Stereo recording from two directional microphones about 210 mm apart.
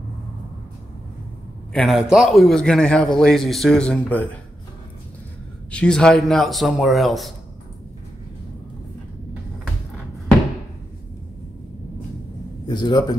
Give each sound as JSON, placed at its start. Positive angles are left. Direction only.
{"t": 1.7, "sound": "a man's voice", "side_deg": 0}
{"t": 5.7, "sound": "a man's voice", "side_deg": 5}
{"t": 12.6, "sound": "a man's voice", "side_deg": 20}